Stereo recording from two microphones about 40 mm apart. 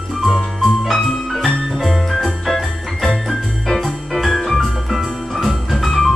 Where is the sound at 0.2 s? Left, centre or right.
Centre.